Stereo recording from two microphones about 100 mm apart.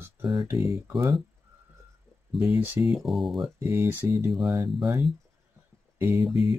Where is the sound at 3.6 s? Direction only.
20° right (ahead or behind).